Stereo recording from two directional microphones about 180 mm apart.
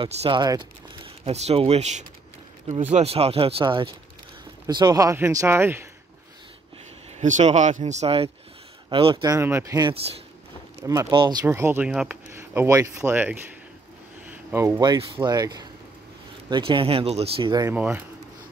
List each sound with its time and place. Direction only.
0.0 s speech: 25° right (ahead or behind)
7.2 s speech: 40° right (ahead or behind); by 13.4 s 10° right (ahead or behind)
14.3 s a sound: 15° right (ahead or behind)
15.2 s speech: 20° right (ahead or behind)
17.6 s speech: 10° right (ahead or behind)